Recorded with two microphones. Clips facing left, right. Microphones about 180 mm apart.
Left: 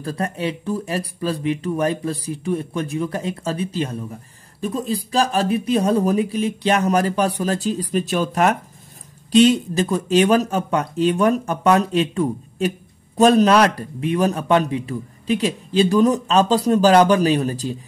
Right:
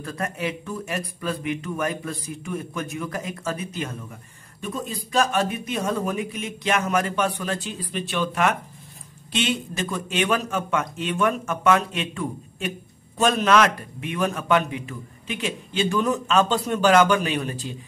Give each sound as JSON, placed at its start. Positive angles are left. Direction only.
{"t": 0.0, "sound": "a man's voice", "side_deg": 30}